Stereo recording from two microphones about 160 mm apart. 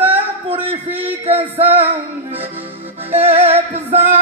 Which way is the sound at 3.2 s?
40° right (ahead or behind).